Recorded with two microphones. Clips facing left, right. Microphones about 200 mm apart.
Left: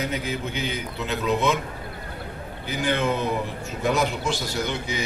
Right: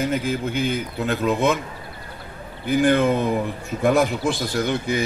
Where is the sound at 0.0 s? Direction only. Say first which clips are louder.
Right 5 dB; 50° right (ahead or behind).